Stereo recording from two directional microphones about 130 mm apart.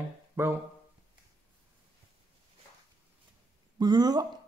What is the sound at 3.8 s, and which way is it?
Speech, 30° right (ahead or behind).